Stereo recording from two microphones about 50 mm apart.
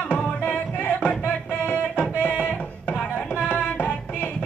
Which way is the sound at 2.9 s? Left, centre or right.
Left.